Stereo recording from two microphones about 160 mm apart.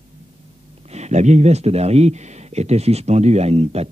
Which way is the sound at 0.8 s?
45° right (ahead or behind).